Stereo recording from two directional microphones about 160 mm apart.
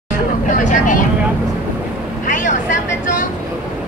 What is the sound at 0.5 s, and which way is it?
Speech, 55° left (ahead or behind).